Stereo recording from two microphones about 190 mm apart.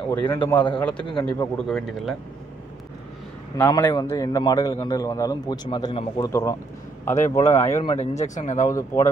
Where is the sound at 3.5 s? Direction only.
10° left (ahead or behind).